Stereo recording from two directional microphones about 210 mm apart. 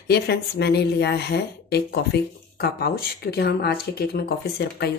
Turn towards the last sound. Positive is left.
turn(degrees=50)  # may be behind; listen again after turning